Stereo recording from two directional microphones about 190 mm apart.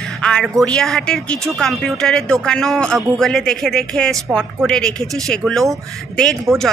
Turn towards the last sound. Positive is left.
turn(degrees=0)  # may be behind; listen again after turning